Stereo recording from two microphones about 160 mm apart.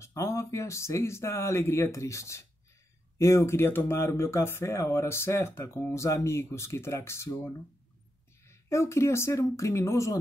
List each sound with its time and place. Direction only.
0.0 s speech: 20° left (ahead or behind)